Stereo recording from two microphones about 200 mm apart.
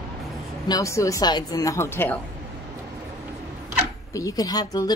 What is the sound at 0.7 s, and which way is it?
A woman's voice, 15° left (ahead or behind).